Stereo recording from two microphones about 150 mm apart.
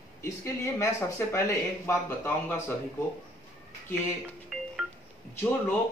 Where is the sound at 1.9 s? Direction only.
15° left (ahead or behind).